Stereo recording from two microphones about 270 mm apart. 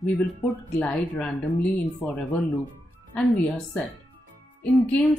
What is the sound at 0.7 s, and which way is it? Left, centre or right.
Speech, centre.